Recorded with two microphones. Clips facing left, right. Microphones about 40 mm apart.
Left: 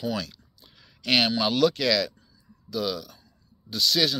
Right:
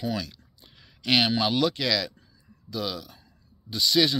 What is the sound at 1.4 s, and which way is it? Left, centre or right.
Speech, centre.